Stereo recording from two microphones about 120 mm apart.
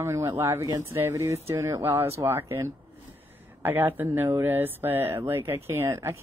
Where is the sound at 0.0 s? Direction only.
25° right (ahead or behind).